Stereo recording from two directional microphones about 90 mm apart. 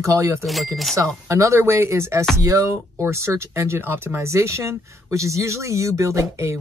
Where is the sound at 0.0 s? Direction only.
35° right (ahead or behind).